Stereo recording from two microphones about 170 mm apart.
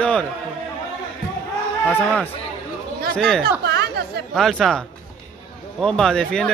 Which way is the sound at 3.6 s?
70° right (ahead or behind).